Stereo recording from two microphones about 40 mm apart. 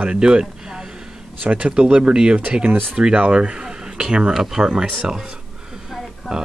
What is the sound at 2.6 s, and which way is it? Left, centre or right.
Speech, right.